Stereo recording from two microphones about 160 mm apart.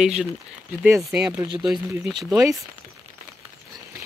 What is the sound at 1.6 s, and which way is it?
Speech, centre (ahead or behind).